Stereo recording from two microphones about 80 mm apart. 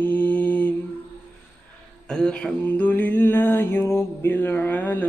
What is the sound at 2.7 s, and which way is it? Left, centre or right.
Mantra, centre.